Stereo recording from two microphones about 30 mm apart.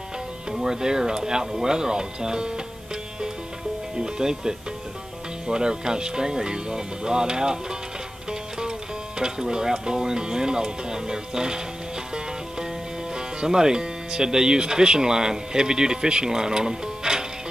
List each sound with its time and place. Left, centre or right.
0.5 s speech: right
3.9 s music: right
5.5 s speech: right
8.3 s music: right
9.2 s speech: right
13.1 s speech: right